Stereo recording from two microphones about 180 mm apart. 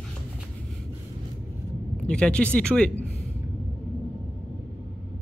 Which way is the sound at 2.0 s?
5° left (ahead or behind).